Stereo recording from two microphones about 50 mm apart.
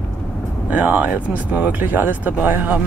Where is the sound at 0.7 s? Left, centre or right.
Right.